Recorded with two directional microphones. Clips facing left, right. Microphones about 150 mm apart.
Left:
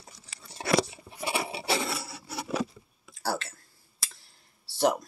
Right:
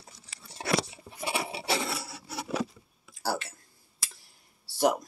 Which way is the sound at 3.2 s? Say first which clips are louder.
Even; 10° right (ahead or behind).